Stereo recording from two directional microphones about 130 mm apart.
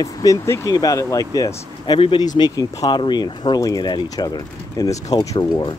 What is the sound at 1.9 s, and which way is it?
Speech, 45° left (ahead or behind).